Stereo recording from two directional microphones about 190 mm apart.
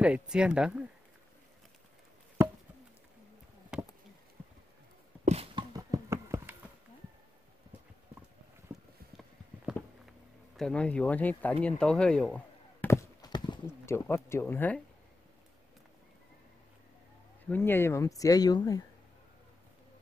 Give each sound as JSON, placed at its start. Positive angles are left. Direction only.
{"t": 0.0, "sound": "speech", "side_deg": -5}
{"t": 2.4, "sound": "chop", "side_deg": -10}
{"t": 3.7, "sound": "insect", "side_deg": -5}
{"t": 5.2, "sound": "a sound", "side_deg": -30}
{"t": 8.7, "sound": "clip-clop", "side_deg": -5}
{"t": 10.6, "sound": "speech", "side_deg": 5}
{"t": 11.6, "sound": "a sound", "side_deg": 5}
{"t": 17.5, "sound": "speech", "side_deg": 10}